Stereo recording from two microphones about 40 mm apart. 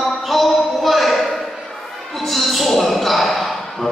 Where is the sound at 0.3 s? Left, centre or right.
Centre.